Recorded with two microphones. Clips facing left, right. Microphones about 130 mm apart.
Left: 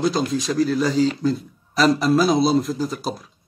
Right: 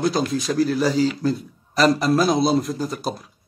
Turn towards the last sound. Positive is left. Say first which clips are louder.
# left 1 dB
turn(degrees=0)  # may be behind; listen again after turning